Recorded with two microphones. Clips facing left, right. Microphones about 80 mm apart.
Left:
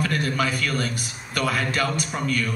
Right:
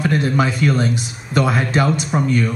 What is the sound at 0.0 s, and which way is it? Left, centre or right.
Speech, right.